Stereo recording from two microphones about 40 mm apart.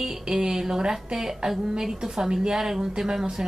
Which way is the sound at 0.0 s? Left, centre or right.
Centre.